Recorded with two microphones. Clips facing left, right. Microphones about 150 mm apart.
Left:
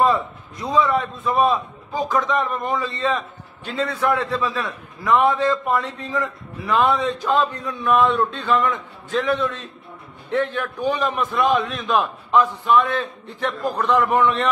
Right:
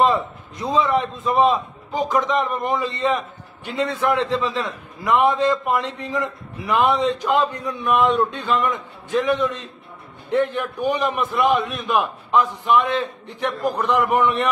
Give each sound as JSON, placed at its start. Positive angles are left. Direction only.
{"t": 0.0, "sound": "a man's voice", "side_deg": -20}